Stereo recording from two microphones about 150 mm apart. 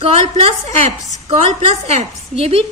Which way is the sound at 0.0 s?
40° right (ahead or behind).